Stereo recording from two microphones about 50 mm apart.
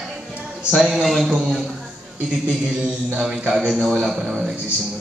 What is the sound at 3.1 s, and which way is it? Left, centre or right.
Speech, right.